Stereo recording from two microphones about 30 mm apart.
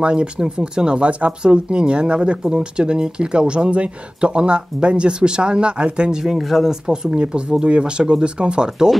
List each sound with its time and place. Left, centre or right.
0.0 s speech: right
6.1 s speech: centre
6.7 s speech: right
7.2 s speech: right
8.6 s speech: centre